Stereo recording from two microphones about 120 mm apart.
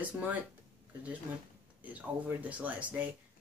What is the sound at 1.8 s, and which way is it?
Speech, 15° right (ahead or behind).